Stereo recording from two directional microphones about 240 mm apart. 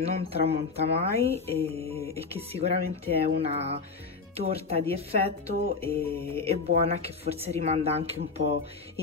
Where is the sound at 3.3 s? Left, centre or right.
Right.